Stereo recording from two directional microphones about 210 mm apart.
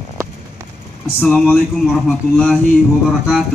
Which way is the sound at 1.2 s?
Centre (ahead or behind).